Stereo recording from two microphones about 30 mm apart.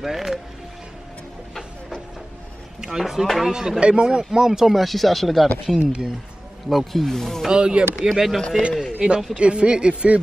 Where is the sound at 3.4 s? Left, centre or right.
Right.